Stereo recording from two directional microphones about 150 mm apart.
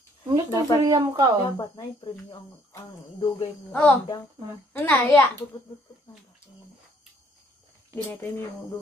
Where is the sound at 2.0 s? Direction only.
20° left (ahead or behind).